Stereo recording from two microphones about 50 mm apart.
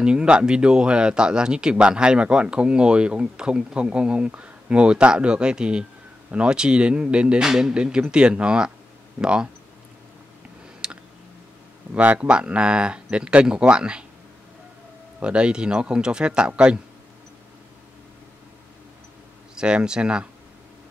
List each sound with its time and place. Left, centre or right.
0.0 s speech: centre
7.4 s speech: centre
10.8 s clicking: centre
11.9 s speech: right
15.2 s speech: centre
19.5 s speech: centre